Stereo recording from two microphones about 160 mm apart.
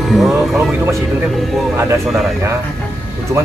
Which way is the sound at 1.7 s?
15° right (ahead or behind).